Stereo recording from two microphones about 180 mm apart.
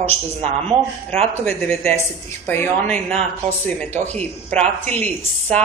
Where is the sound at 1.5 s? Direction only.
10° left (ahead or behind).